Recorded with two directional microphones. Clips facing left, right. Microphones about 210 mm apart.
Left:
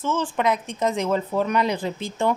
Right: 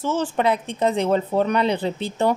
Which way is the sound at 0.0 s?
40° right (ahead or behind).